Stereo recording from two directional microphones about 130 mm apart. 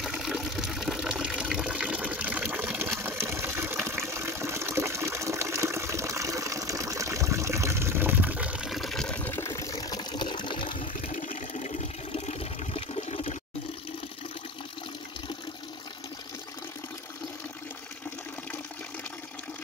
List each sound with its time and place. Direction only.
0.0 s water: centre (ahead or behind); by 10.7 s 40° left (ahead or behind)
11.0 s water: 85° left; by 13.4 s 50° left (ahead or behind)